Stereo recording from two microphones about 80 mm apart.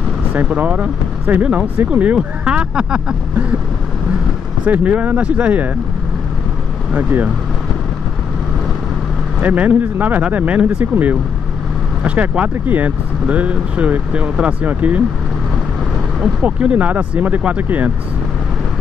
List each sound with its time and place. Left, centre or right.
0.3 s speech: centre
4.6 s speech: centre
6.9 s speech: centre
9.4 s speech: right
16.4 s speech: centre